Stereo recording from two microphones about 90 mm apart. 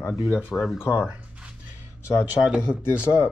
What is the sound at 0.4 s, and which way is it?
Speech, 5° right (ahead or behind).